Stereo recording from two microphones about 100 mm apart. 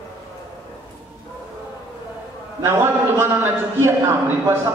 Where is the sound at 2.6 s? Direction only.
25° right (ahead or behind).